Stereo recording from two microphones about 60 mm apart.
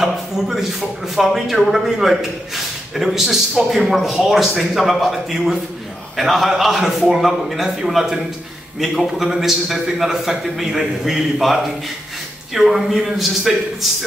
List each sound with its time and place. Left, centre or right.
0.0 s a man's voice: centre